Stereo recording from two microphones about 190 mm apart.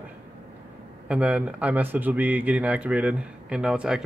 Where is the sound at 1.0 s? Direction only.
5° right (ahead or behind).